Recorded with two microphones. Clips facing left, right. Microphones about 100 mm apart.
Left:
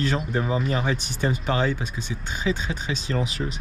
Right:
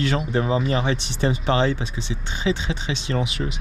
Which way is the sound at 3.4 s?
Centre (ahead or behind).